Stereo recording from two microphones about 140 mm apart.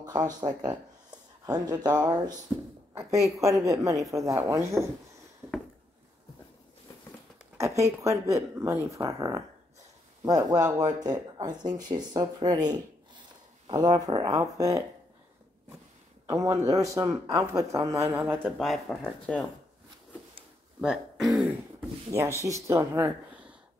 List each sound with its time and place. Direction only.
0.0 s speech: 30° right (ahead or behind)
3.0 s speech: 25° right (ahead or behind)
7.5 s a sound: 20° right (ahead or behind)
8.0 s speech: 20° right (ahead or behind)
10.2 s speech: 25° right (ahead or behind)
16.3 s speech: 20° right (ahead or behind)
18.6 s speech: centre (ahead or behind)
20.8 s speech: centre (ahead or behind)
22.1 s speech: 20° right (ahead or behind)